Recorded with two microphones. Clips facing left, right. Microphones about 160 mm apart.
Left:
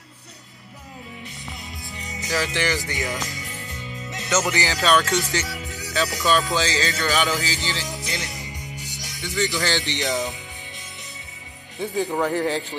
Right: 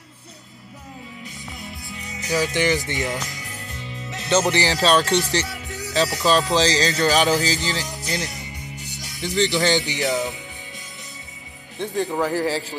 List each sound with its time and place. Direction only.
2.2 s speech: 20° right (ahead or behind)
3.7 s music: centre (ahead or behind)
4.3 s music: 30° right (ahead or behind)
5.5 s music: centre (ahead or behind)
6.5 s music: 35° right (ahead or behind)
9.5 s speech: 20° right (ahead or behind)
9.9 s a man's voice: centre (ahead or behind)
11.8 s a man's voice: centre (ahead or behind)